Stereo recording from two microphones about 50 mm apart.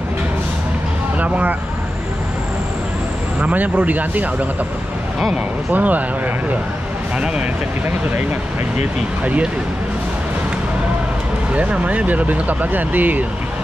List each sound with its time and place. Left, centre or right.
1.2 s speech: right
3.3 s speech: right
5.7 s speech: right
9.2 s speech: right
11.5 s speech: right